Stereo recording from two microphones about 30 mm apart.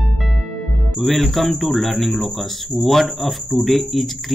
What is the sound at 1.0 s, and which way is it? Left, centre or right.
Speech, centre.